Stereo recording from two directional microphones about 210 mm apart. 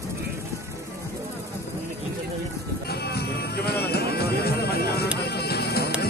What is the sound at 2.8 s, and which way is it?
Music, 50° left (ahead or behind).